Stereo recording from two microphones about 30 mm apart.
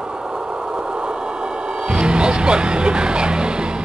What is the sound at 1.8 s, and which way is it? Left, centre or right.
Music, right.